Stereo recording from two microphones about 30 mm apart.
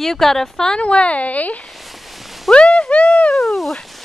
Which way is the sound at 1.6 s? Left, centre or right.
Centre.